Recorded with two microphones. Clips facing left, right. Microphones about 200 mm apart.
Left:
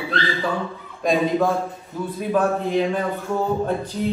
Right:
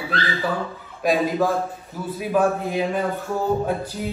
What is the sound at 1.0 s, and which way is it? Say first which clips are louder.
A woman's voice: left 1 dB; 5° right (ahead or behind).